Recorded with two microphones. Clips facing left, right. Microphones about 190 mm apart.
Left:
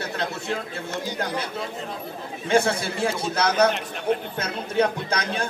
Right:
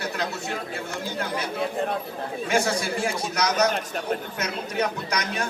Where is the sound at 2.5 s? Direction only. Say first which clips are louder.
Left 4 dB; 25° left (ahead or behind).